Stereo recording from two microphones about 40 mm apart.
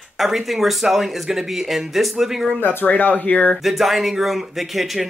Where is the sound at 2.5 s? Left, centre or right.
Left.